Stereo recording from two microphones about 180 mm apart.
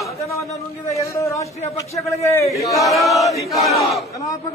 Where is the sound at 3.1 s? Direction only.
20° left (ahead or behind).